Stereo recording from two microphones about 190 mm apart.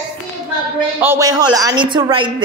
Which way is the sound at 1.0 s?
15° right (ahead or behind).